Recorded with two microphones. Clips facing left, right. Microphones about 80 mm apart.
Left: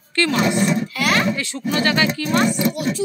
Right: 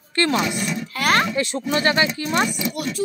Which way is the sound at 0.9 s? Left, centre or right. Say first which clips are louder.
Right 5 dB; right.